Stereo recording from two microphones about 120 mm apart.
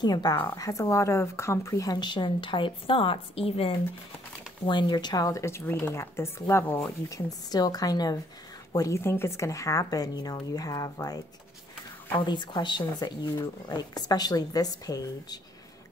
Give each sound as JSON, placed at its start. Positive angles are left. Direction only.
{"t": 0.0, "sound": "a woman's voice", "side_deg": 35}
{"t": 4.6, "sound": "speech", "side_deg": 40}
{"t": 7.1, "sound": "a woman's voice", "side_deg": 30}
{"t": 12.3, "sound": "a woman's voice", "side_deg": 40}